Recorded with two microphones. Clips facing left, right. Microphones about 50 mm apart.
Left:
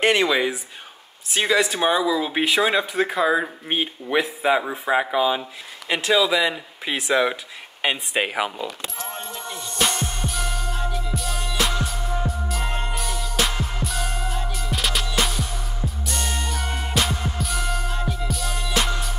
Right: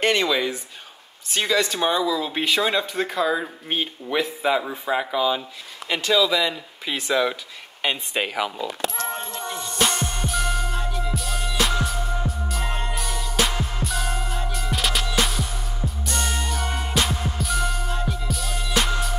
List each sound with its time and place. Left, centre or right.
0.0 s speech: centre
9.0 s music: centre